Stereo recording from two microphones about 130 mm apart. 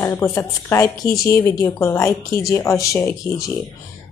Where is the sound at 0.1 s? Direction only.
20° left (ahead or behind).